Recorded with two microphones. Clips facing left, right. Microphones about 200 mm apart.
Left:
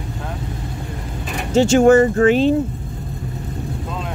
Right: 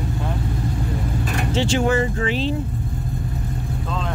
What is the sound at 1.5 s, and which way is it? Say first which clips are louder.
Speech: left 9 dB; 45° left (ahead or behind).